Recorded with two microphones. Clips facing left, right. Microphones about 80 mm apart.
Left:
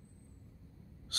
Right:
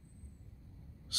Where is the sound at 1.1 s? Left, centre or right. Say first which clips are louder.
Left 2 dB; left.